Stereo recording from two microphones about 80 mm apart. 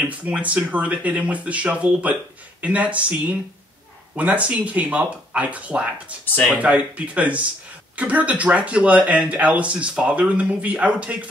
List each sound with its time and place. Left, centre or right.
0.0 s speech: centre